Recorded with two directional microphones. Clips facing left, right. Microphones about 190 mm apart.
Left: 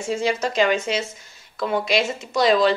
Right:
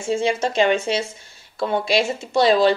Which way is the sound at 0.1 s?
30° right (ahead or behind).